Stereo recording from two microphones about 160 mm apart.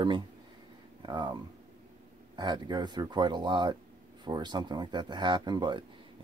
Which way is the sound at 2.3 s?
25° right (ahead or behind).